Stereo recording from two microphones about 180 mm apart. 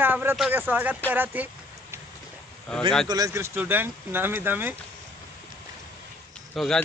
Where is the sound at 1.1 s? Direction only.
10° right (ahead or behind).